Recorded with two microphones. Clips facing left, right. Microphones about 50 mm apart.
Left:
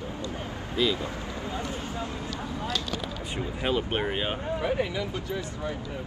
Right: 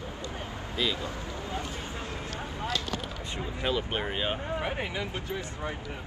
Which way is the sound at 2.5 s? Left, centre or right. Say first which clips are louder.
Even; right.